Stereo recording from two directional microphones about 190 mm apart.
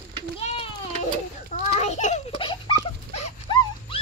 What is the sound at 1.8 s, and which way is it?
Dog, 35° left (ahead or behind).